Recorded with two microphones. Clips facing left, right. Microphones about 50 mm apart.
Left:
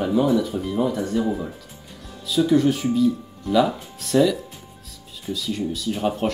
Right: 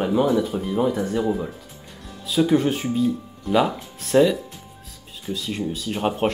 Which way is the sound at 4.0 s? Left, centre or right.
Right.